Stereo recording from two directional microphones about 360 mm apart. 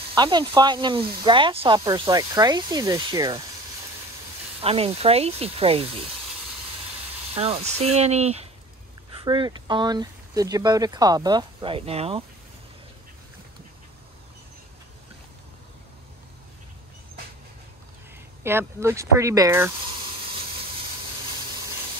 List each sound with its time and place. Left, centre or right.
0.1 s speech: centre
4.6 s speech: centre
7.3 s speech: centre
18.4 s speech: centre